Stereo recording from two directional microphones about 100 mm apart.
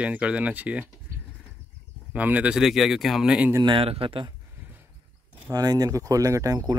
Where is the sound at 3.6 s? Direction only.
65° right (ahead or behind).